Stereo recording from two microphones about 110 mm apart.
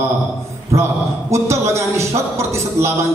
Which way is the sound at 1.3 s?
25° right (ahead or behind).